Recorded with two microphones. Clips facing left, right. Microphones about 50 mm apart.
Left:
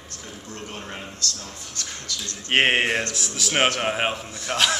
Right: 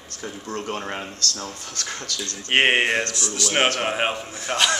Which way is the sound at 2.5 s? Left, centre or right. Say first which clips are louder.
Right 1 dB; centre.